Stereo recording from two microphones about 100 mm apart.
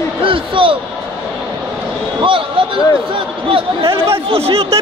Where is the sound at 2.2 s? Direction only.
60° right (ahead or behind).